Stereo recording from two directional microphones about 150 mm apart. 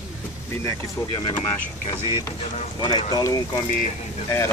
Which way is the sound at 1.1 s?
35° left (ahead or behind).